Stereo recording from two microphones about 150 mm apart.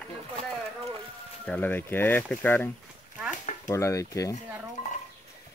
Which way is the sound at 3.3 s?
55° left (ahead or behind).